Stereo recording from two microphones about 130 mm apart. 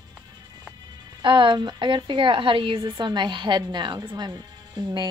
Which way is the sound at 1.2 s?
40° right (ahead or behind).